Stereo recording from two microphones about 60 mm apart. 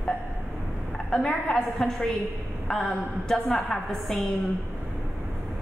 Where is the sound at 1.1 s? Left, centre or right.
Centre.